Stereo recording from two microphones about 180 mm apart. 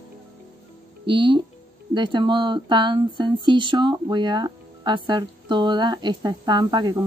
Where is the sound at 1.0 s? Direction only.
25° right (ahead or behind).